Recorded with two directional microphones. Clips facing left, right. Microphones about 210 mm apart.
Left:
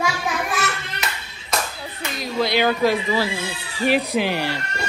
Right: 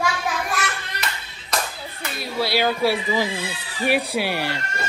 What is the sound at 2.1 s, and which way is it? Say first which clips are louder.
Speech: left 2 dB; 5° right (ahead or behind).